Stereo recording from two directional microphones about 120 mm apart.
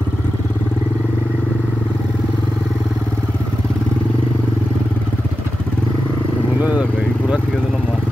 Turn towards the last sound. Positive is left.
turn(degrees=-10)  # may be behind; listen again after turning